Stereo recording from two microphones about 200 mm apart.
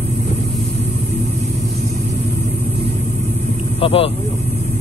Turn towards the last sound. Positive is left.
turn(degrees=25)  # may be behind; listen again after turning